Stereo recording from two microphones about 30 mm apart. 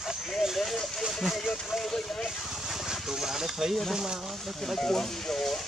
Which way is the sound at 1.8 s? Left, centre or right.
Centre.